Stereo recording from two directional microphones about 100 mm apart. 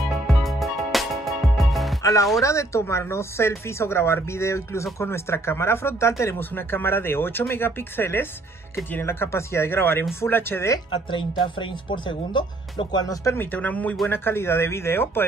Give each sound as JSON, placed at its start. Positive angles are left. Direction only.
{"t": 0.3, "sound": "music", "side_deg": 0}
{"t": 2.4, "sound": "speech", "side_deg": 30}
{"t": 11.9, "sound": "speech", "side_deg": 55}